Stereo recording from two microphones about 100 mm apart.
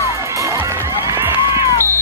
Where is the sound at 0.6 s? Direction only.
20° right (ahead or behind).